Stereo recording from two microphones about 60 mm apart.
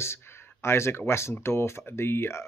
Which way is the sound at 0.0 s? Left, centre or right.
Left.